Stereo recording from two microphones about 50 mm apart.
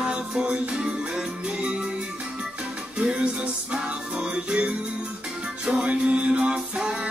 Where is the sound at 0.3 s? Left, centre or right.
Centre.